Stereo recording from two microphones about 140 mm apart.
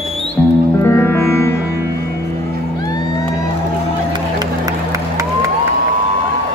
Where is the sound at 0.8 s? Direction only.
15° left (ahead or behind).